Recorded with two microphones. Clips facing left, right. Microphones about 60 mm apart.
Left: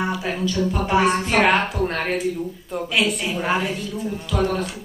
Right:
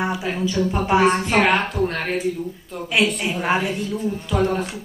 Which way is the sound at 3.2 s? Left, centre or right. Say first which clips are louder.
Right 1 dB; centre.